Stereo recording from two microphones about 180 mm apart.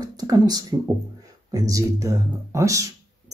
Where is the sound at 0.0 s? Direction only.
20° right (ahead or behind).